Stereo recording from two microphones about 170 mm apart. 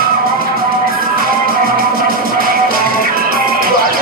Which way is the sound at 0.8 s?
60° right (ahead or behind).